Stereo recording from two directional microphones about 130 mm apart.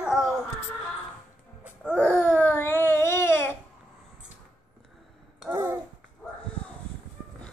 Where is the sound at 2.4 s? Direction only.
15° left (ahead or behind).